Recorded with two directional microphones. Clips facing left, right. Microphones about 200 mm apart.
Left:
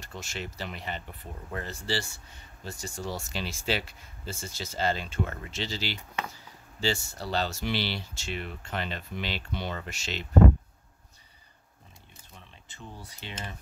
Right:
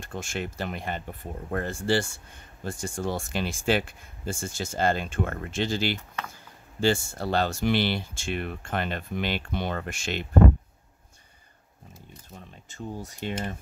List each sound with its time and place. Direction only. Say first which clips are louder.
0.0 s speech: right 6 dB; 50° right (ahead or behind)
12.4 s speech: right 8 dB; 45° right (ahead or behind)